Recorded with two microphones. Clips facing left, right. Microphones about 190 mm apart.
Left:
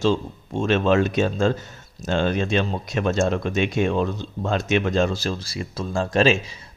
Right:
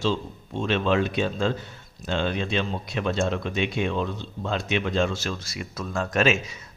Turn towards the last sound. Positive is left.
turn(degrees=30)  # may be behind; listen again after turning